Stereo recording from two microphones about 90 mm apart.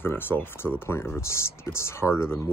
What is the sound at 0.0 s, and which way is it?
Speech, 25° left (ahead or behind).